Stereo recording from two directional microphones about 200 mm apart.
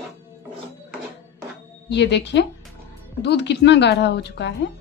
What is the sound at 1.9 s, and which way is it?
A woman's voice, 60° left (ahead or behind).